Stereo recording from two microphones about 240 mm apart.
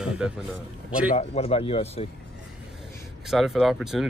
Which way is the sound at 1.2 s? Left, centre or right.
Left.